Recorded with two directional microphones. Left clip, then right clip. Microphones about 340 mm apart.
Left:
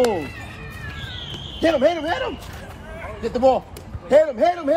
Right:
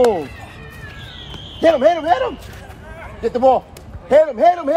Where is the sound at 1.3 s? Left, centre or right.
Right.